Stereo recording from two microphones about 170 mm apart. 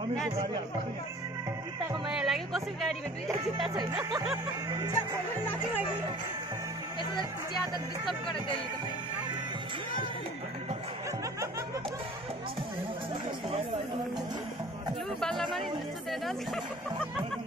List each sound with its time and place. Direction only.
2.0 s speech: centre (ahead or behind)
3.3 s speech: 25° right (ahead or behind)
15.1 s chatter: centre (ahead or behind)